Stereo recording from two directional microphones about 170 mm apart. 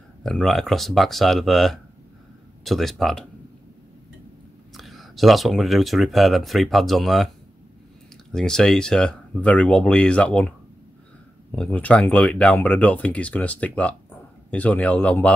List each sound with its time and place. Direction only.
0.2 s speech: centre (ahead or behind)
4.7 s speech: centre (ahead or behind)
8.3 s speech: 5° left (ahead or behind)
11.5 s speech: 5° left (ahead or behind)